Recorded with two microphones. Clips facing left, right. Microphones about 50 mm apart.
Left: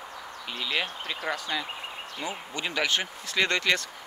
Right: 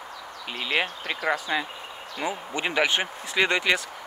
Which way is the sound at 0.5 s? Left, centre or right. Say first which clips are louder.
Right 4 dB; right.